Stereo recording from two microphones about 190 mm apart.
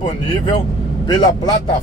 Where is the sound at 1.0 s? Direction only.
20° left (ahead or behind).